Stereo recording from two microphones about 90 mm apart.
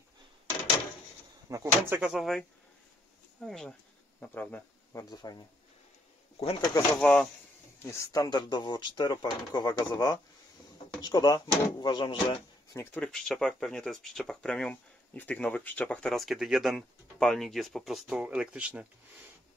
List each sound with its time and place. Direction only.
1.5 s speech: 35° right (ahead or behind)
2.0 s speech: centre (ahead or behind)
4.3 s speech: 20° left (ahead or behind)
5.1 s speech: 50° left (ahead or behind)
7.0 s speech: 10° left (ahead or behind)
7.8 s speech: 35° left (ahead or behind)
8.3 s speech: 55° left (ahead or behind); by 12.4 s 75° left (ahead or behind)
12.7 s speech: 30° left (ahead or behind)
13.0 s speech: 5° left (ahead or behind)
16.1 s speech: centre (ahead or behind)